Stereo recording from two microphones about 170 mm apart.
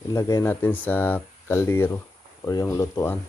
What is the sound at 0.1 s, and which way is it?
Speech, 20° left (ahead or behind).